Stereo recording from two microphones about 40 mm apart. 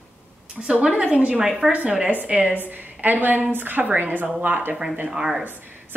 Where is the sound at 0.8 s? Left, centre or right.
Right.